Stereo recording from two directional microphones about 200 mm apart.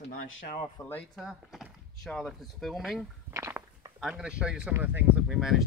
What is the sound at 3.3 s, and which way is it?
Walk, 15° right (ahead or behind).